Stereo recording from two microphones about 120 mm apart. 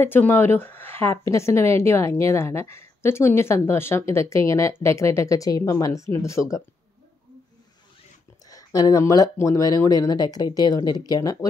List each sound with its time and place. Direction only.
0.0 s a woman's voice: 15° left (ahead or behind)
8.5 s speech: 30° left (ahead or behind)